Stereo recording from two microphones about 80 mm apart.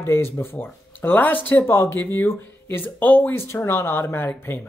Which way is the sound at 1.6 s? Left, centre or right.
Left.